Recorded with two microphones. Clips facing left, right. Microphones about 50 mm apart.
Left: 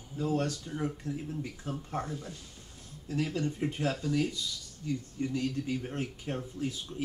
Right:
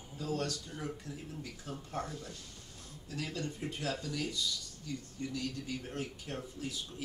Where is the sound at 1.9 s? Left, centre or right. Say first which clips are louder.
Left 2 dB; left.